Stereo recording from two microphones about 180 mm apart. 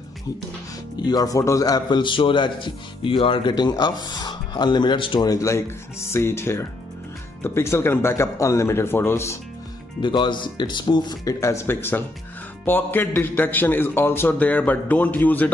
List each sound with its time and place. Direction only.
1.0 s a man's voice: 20° left (ahead or behind)
10.0 s a man's voice: 25° left (ahead or behind); by 15.5 s 10° left (ahead or behind)